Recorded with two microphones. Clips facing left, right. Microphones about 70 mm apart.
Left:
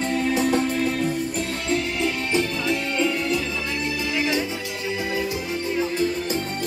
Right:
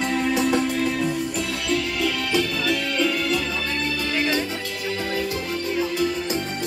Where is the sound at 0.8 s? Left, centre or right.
Right.